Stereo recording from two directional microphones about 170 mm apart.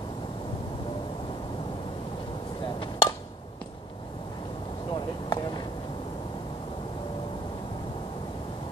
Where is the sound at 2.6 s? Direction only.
30° left (ahead or behind).